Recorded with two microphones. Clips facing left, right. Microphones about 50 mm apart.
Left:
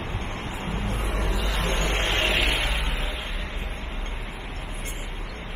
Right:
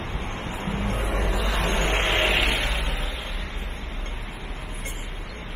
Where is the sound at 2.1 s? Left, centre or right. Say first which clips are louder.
Even; centre.